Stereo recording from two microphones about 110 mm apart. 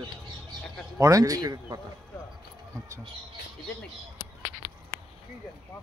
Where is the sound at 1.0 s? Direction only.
30° right (ahead or behind).